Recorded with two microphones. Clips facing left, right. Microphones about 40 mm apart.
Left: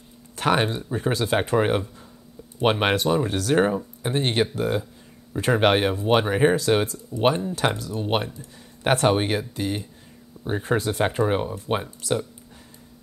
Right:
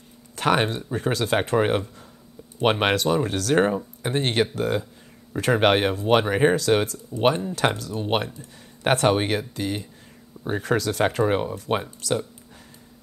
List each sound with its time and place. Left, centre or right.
0.4 s speech: right
2.6 s speech: right
10.6 s speech: right